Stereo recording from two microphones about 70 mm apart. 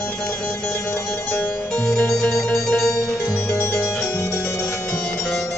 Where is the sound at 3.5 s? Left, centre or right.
Left.